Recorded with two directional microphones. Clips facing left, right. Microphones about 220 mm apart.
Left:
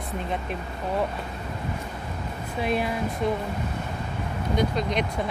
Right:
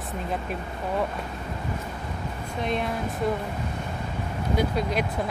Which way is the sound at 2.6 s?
5° left (ahead or behind).